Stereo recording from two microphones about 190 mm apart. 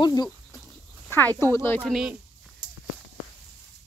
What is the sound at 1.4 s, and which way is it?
Speech, 15° left (ahead or behind).